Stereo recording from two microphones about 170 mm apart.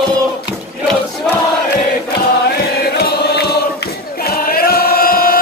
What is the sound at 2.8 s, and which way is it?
Chant, 70° left (ahead or behind).